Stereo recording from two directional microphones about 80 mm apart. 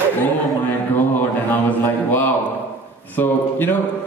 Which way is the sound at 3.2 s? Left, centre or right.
Left.